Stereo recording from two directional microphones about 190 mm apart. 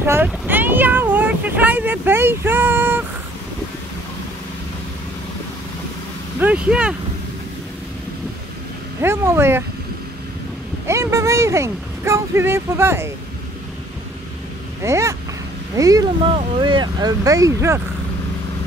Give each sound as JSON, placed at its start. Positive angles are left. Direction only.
{"t": 0.0, "sound": "vehicle", "side_deg": -10}
{"t": 6.4, "sound": "speech", "side_deg": -5}
{"t": 9.0, "sound": "speech", "side_deg": -15}
{"t": 10.9, "sound": "speech", "side_deg": -15}
{"t": 14.8, "sound": "speech", "side_deg": -15}